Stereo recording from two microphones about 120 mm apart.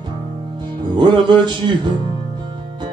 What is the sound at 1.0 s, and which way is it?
Music, 40° right (ahead or behind).